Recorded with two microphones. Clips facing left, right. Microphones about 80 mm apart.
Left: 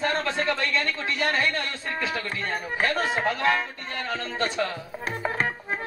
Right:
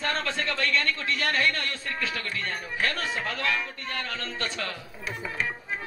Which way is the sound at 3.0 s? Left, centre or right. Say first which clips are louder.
Left 6 dB; left.